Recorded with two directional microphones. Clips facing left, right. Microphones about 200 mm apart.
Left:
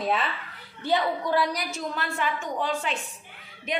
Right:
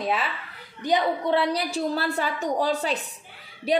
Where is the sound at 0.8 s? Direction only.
15° right (ahead or behind); by 3.8 s 35° right (ahead or behind).